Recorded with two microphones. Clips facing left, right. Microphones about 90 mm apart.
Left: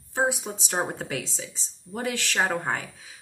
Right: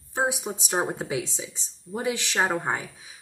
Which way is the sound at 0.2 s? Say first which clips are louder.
Left 1 dB; 10° right (ahead or behind).